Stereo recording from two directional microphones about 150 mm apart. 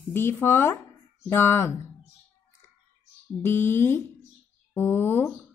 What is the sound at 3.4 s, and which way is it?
Speech, 15° left (ahead or behind).